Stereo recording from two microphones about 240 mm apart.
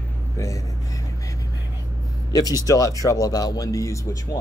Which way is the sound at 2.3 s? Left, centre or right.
Centre.